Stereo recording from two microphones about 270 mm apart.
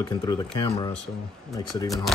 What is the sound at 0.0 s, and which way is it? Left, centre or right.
Speech, centre.